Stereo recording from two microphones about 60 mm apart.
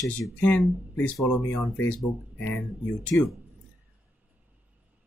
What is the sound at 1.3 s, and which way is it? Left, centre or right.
Speech, left.